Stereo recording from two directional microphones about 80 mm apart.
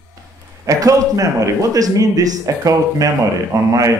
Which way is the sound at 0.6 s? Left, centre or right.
Right.